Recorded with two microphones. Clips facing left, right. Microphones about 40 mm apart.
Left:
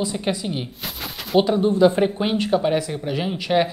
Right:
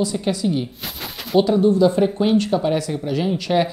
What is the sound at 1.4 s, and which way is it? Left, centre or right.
Speech, left.